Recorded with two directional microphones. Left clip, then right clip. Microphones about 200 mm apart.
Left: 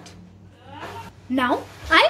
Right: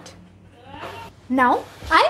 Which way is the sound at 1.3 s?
Centre (ahead or behind).